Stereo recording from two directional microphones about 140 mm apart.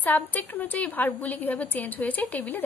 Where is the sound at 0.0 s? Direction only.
10° left (ahead or behind).